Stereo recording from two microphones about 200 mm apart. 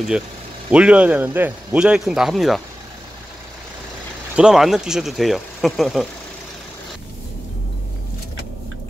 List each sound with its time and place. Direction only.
0.7 s a man's voice: 5° right (ahead or behind)
4.4 s a man's voice: 5° right (ahead or behind)